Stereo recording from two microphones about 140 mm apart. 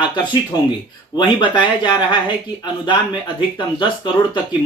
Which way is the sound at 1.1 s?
35° left (ahead or behind).